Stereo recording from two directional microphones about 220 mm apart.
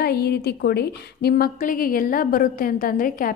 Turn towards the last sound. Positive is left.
turn(degrees=40)  # may be behind; listen again after turning